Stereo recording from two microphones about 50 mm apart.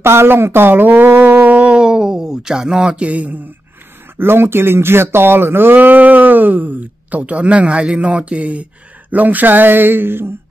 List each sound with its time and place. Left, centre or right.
0.0 s speech: right
4.2 s speech: right
5.8 s speech: right